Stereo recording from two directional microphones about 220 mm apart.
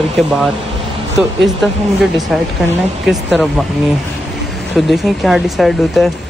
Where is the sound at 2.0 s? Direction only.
Centre (ahead or behind).